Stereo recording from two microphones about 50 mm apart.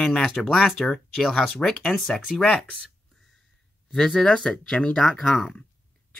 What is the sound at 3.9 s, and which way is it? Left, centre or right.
Speech, centre.